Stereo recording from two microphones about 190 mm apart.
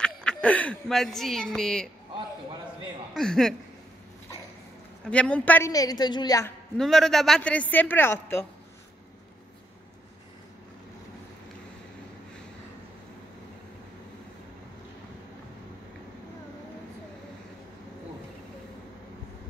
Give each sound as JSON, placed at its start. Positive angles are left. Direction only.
{"t": 0.0, "sound": "speech", "side_deg": 5}
{"t": 3.2, "sound": "a man's voice", "side_deg": 0}
{"t": 5.0, "sound": "a woman's voice", "side_deg": 5}
{"t": 6.8, "sound": "a man's voice", "side_deg": 0}